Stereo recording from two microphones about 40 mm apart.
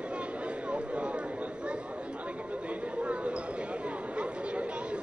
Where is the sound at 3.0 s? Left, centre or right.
Right.